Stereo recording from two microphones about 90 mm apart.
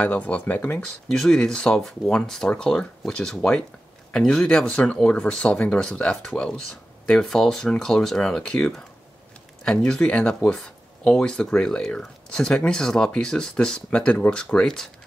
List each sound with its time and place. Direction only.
0.0 s speech: 20° left (ahead or behind)
1.0 s speech: 5° left (ahead or behind)